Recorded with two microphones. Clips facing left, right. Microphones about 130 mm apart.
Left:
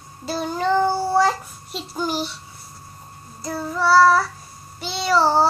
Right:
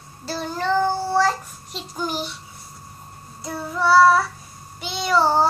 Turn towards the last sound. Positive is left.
turn(degrees=5)  # may be behind; listen again after turning